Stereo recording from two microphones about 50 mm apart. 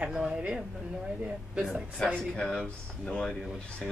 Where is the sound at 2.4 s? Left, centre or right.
Centre.